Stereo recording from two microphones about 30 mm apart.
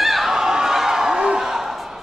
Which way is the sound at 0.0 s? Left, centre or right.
Centre.